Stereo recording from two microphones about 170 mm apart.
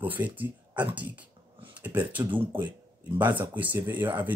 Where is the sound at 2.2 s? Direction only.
20° right (ahead or behind).